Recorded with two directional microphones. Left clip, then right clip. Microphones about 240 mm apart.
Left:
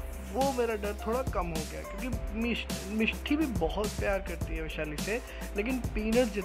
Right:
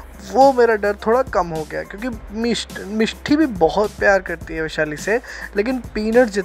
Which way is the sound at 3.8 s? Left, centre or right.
Right.